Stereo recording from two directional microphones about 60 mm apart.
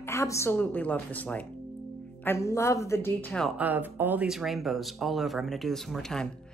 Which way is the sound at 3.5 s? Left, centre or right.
Right.